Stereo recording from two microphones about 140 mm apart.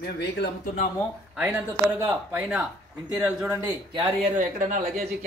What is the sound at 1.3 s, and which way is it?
A man's voice, 15° right (ahead or behind).